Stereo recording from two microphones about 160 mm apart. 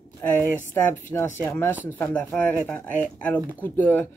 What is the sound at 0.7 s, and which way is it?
Speech, 15° left (ahead or behind).